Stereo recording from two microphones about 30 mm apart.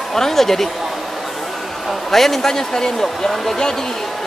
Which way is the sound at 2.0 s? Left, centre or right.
Centre.